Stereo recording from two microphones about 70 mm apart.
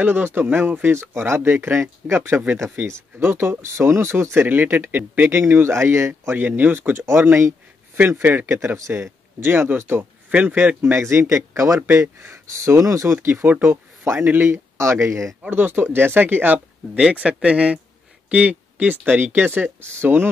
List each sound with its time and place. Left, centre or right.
0.0 s speech: right
5.5 s speech: right
6.3 s speech: right
8.5 s speech: right
15.5 s speech: right
17.1 s speech: centre